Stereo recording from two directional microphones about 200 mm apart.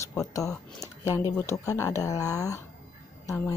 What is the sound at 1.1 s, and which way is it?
A woman's voice, 15° left (ahead or behind).